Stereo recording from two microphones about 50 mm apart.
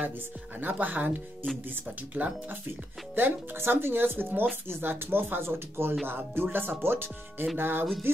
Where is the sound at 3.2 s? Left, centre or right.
Right.